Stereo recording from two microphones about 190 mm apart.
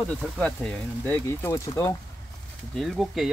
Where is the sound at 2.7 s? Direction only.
Centre (ahead or behind).